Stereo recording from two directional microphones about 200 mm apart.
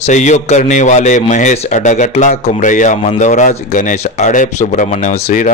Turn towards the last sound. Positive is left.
turn(degrees=35)  # may be behind; listen again after turning